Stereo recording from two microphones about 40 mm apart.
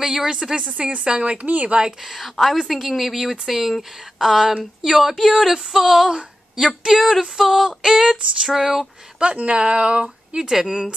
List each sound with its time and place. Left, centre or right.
0.0 s a woman's voice: centre
1.4 s speech: right
2.0 s a woman's voice: centre
9.2 s a woman's voice: right; by 10.9 s centre